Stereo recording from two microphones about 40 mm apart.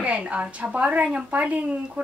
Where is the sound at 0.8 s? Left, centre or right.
Right.